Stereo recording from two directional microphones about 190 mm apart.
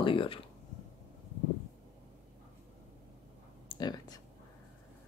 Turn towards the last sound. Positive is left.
turn(degrees=20)  # may be behind; listen again after turning